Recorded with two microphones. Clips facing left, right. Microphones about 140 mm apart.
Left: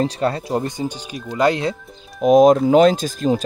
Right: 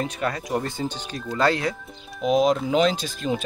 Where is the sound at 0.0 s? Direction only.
30° left (ahead or behind).